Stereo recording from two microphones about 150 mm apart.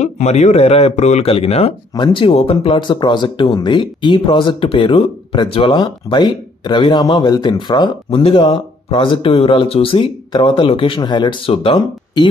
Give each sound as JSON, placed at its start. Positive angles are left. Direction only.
{"t": 0.0, "sound": "speech", "side_deg": 50}